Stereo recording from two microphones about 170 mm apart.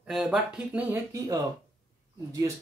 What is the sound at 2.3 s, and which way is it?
Speech, 20° right (ahead or behind).